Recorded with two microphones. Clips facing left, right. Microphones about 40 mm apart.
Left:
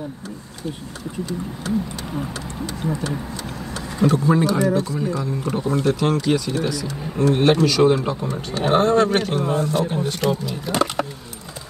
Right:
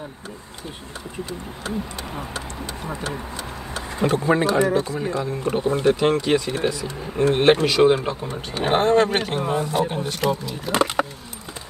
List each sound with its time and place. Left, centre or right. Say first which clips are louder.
2.1 s speech: left 4 dB; centre